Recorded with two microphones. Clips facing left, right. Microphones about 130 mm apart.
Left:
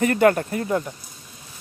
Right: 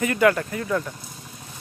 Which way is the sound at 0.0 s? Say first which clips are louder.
Left 2 dB; 40° left (ahead or behind).